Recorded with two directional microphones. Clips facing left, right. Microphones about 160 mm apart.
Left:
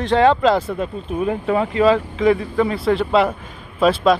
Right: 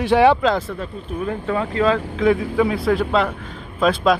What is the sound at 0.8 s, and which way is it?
Speech, 15° left (ahead or behind).